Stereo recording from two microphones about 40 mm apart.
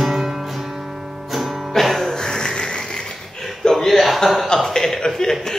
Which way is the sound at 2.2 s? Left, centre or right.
Centre.